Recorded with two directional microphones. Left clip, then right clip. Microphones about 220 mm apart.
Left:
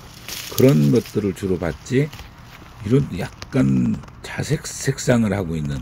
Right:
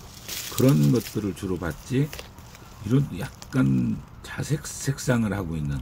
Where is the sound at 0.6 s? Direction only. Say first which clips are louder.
Left 6 dB; 10° left (ahead or behind).